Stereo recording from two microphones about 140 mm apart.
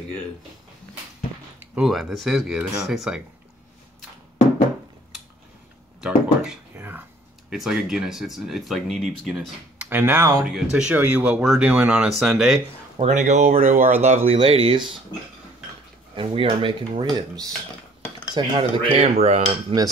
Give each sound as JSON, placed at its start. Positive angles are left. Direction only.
{"t": 1.6, "sound": "speech", "side_deg": -5}
{"t": 5.9, "sound": "speech", "side_deg": -5}
{"t": 6.7, "sound": "whispering", "side_deg": -15}
{"t": 7.4, "sound": "speech", "side_deg": -5}
{"t": 9.8, "sound": "speech", "side_deg": -15}
{"t": 10.4, "sound": "speech", "side_deg": -5}
{"t": 12.9, "sound": "speech", "side_deg": -55}
{"t": 14.0, "sound": "speech", "side_deg": -50}
{"t": 16.2, "sound": "speech", "side_deg": -40}